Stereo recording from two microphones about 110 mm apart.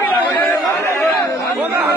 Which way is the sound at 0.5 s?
20° left (ahead or behind).